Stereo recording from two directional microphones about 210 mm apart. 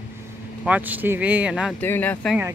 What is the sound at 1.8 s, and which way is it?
Speech, 10° left (ahead or behind).